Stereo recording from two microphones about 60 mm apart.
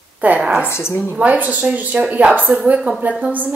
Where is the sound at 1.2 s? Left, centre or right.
Right.